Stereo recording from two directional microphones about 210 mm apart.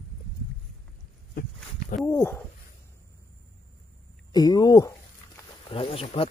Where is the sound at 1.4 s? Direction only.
45° left (ahead or behind).